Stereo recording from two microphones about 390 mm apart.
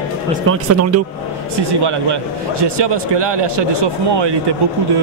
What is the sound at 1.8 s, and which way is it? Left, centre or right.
A man's voice, right.